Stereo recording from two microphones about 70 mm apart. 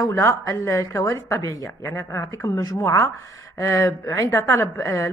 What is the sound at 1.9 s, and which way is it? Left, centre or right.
Speech, left.